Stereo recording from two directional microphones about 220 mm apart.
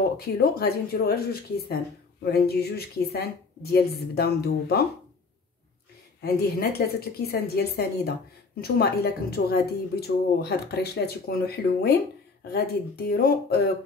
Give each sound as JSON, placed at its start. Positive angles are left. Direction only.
{"t": 0.2, "sound": "speech", "side_deg": 45}
{"t": 6.2, "sound": "speech", "side_deg": 45}